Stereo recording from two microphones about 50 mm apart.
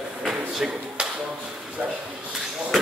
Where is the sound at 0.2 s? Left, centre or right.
Centre.